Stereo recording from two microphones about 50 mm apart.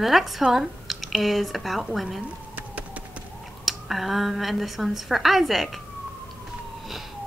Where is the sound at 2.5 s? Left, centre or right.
Right.